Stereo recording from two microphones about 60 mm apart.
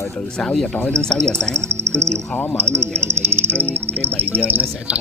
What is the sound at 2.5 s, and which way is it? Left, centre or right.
Speech, right.